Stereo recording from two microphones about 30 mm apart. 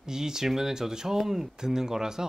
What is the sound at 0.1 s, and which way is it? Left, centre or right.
Speech, centre.